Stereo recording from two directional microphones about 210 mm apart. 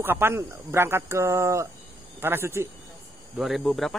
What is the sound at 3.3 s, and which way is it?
Speech, centre (ahead or behind).